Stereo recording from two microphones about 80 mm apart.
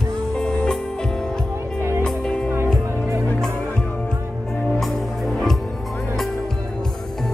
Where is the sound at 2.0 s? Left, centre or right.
Centre.